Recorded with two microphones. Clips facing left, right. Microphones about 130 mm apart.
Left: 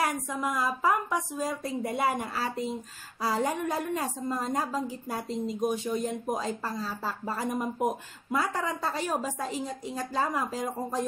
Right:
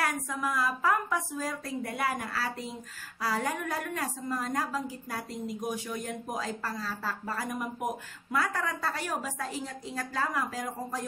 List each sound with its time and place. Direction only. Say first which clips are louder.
0.0 s a woman's voice: left 2 dB; 20° left (ahead or behind)